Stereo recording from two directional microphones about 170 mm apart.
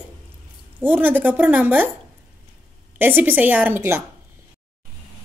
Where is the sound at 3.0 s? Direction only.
10° right (ahead or behind).